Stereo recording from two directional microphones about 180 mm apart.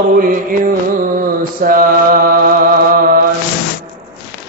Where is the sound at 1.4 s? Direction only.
50° right (ahead or behind).